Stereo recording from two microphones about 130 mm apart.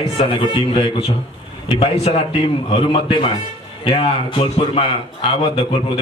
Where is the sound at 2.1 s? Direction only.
45° left (ahead or behind).